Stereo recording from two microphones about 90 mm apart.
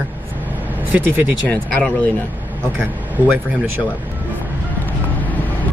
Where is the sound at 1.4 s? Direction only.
15° left (ahead or behind).